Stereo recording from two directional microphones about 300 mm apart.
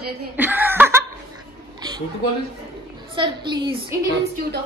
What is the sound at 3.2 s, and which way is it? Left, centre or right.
Speech, centre.